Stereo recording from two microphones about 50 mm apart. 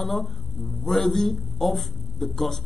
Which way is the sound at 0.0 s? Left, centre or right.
Centre.